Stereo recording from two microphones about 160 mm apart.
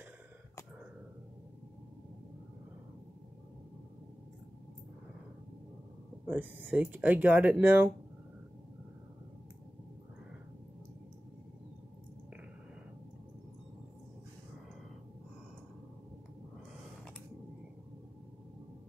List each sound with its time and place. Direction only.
6.2 s speech: 10° right (ahead or behind)